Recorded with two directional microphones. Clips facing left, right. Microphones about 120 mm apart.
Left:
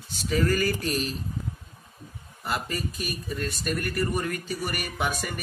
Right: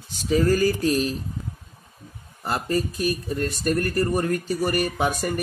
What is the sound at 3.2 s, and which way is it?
Speech, 40° right (ahead or behind).